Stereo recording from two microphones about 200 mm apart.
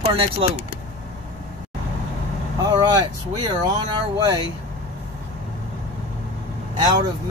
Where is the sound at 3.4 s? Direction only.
20° right (ahead or behind).